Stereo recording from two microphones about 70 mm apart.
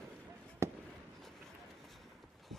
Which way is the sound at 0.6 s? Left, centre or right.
Right.